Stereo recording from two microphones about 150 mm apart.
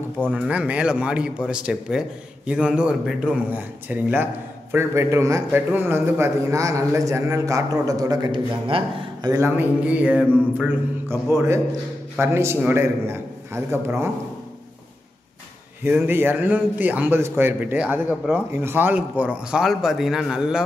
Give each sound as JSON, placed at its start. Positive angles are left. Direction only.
{"t": 0.4, "sound": "a man's voice", "side_deg": -10}
{"t": 9.3, "sound": "a man's voice", "side_deg": -15}
{"t": 15.8, "sound": "a man's voice", "side_deg": -15}